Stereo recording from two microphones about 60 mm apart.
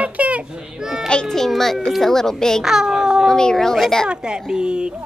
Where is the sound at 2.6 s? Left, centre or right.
Centre.